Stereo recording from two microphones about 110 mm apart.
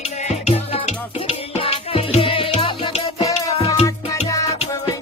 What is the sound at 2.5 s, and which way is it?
Music, 70° left (ahead or behind).